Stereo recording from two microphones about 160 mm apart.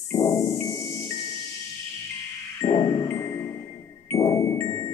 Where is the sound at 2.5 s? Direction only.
20° left (ahead or behind).